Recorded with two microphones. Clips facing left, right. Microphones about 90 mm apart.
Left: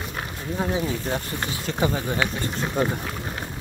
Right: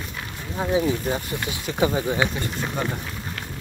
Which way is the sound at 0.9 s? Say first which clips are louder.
Right 3 dB; 5° right (ahead or behind).